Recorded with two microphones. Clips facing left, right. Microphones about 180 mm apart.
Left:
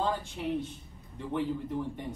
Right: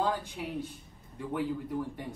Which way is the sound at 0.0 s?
10° right (ahead or behind).